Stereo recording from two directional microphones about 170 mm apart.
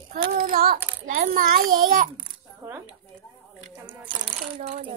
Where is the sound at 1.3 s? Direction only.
55° right (ahead or behind).